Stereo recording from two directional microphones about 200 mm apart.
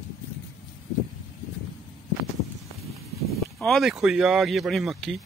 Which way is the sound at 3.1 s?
Centre (ahead or behind).